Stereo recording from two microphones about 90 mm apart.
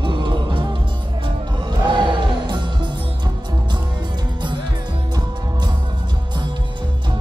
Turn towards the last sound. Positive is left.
turn(degrees=-50)  # may be behind; listen again after turning